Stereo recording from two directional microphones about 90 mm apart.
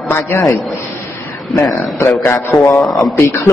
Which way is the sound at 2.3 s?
30° left (ahead or behind).